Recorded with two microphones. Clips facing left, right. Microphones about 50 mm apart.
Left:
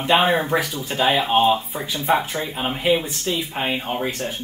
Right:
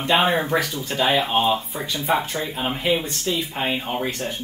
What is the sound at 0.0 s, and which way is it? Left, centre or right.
Speech, centre.